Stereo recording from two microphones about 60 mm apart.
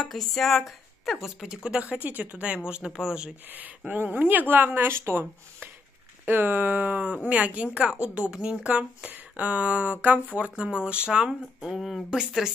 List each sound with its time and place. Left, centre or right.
0.0 s a woman's voice: centre
1.5 s speech: centre
2.0 s a woman's voice: right; by 3.3 s centre
3.4 s speech: right
6.2 s a woman's voice: right; by 12.2 s centre